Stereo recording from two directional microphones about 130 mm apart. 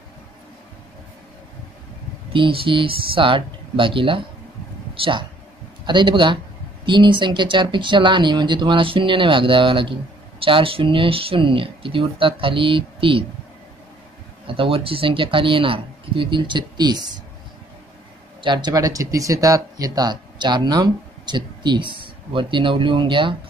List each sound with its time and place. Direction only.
2.3 s speech: 40° right (ahead or behind)
14.5 s speech: 45° right (ahead or behind)
18.4 s speech: 35° right (ahead or behind)